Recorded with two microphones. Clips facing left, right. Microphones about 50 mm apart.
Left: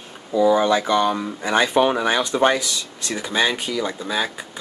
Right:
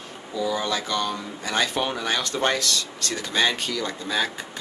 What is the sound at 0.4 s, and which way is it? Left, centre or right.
Speech, left.